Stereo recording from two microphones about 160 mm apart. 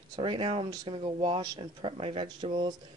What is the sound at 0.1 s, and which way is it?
Speech, 30° right (ahead or behind).